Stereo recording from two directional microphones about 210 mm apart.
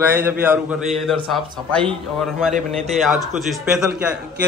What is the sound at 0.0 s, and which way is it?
A man's voice, 10° right (ahead or behind).